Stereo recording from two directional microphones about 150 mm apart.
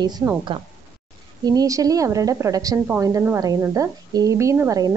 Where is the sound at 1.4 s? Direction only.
25° right (ahead or behind).